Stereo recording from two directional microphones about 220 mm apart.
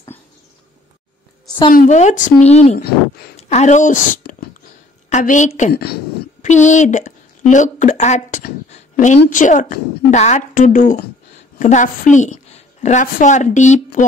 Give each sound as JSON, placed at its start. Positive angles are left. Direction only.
{"t": 1.7, "sound": "a woman's voice", "side_deg": 35}
{"t": 6.4, "sound": "a woman's voice", "side_deg": 35}
{"t": 8.6, "sound": "a sound", "side_deg": 30}
{"t": 9.2, "sound": "a woman's voice", "side_deg": 35}